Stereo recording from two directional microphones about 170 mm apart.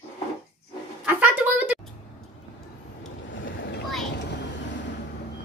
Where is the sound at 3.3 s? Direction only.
90° left.